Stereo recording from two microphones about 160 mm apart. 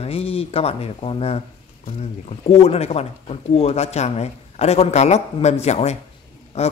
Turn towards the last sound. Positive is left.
turn(degrees=40)  # may be behind; listen again after turning